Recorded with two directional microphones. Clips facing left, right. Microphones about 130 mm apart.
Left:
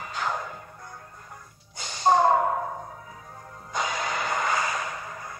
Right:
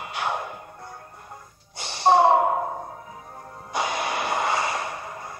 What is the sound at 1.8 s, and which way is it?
Gasp, 25° right (ahead or behind).